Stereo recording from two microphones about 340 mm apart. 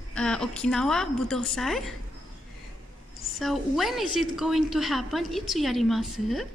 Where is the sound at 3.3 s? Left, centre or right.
Centre.